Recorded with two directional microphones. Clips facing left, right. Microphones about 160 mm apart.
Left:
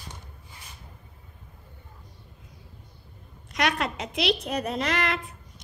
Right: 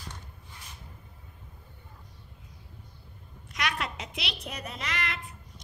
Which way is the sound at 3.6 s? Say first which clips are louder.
Left 6 dB; 40° left (ahead or behind).